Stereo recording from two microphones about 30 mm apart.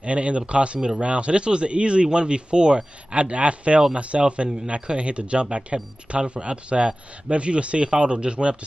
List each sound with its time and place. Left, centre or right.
0.0 s speech: right
0.7 s speech: centre
1.0 s speech: right
3.2 s speech: right
4.1 s speech: right
4.6 s speech: right